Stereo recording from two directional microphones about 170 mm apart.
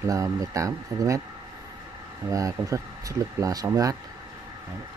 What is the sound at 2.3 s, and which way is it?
Speech, 20° right (ahead or behind).